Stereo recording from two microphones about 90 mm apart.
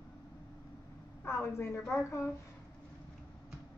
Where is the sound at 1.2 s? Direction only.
30° left (ahead or behind).